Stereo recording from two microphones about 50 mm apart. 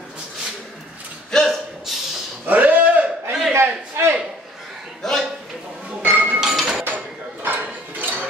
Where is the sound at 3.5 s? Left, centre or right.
Right.